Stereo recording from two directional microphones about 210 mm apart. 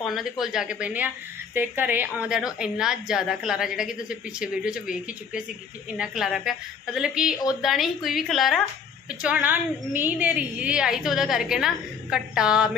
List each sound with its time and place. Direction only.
0.0 s a woman's voice: centre (ahead or behind)